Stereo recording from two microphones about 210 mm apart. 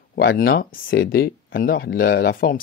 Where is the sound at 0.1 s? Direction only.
45° left (ahead or behind).